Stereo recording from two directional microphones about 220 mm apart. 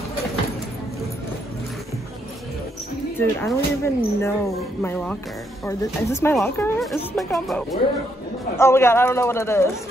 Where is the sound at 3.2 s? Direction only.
10° left (ahead or behind).